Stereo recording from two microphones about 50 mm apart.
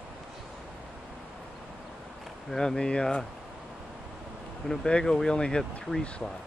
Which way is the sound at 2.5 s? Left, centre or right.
Centre.